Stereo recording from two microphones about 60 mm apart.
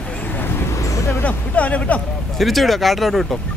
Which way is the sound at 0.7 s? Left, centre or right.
Left.